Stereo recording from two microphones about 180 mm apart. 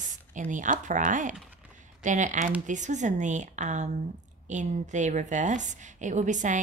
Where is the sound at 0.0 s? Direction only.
45° right (ahead or behind).